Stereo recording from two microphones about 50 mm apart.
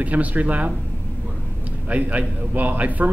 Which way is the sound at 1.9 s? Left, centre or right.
Right.